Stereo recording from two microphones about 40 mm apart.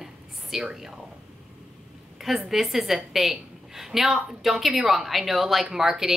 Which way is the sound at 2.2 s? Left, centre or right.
Centre.